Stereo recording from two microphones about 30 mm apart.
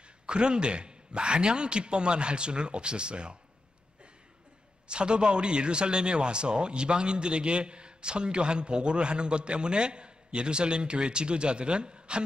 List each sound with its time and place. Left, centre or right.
0.3 s a man's voice: right
4.8 s a man's voice: right